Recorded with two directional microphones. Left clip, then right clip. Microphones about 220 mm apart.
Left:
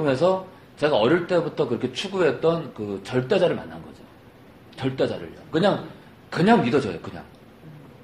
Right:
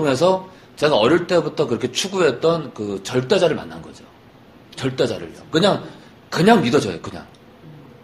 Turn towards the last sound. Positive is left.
turn(degrees=-20)  # may be behind; listen again after turning